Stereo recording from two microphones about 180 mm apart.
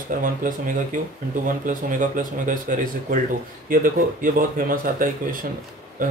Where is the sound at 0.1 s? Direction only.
50° right (ahead or behind).